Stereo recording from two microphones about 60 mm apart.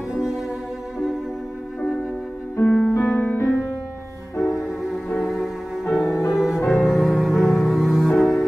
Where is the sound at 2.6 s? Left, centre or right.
Centre.